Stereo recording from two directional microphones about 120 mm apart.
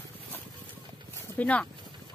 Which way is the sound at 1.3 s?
10° left (ahead or behind).